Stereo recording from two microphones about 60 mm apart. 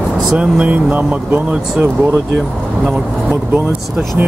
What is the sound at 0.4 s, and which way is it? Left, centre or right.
Speech, right.